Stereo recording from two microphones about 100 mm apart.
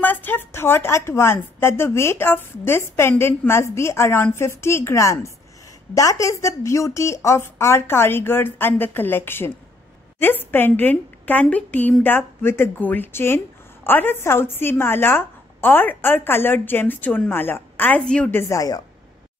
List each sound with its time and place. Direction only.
0.0 s a woman's voice: 20° left (ahead or behind)
18.0 s a woman's voice: 10° left (ahead or behind)
18.5 s speech: 35° left (ahead or behind)